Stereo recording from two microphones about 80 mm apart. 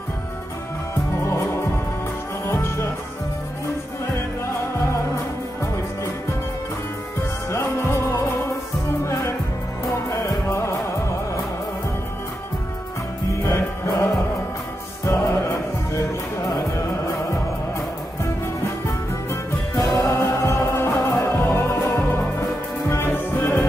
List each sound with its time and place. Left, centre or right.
1.2 s music: left
7.5 s music: left
10.0 s music: left
13.4 s music: left
20.0 s music: left